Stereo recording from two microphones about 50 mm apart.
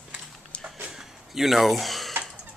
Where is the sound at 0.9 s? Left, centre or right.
Centre.